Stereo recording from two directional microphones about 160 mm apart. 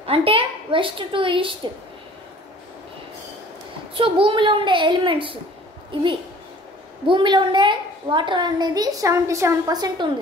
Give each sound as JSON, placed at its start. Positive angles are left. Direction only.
{"t": 0.0, "sound": "a woman's voice", "side_deg": -35}
{"t": 3.9, "sound": "a woman's voice", "side_deg": -35}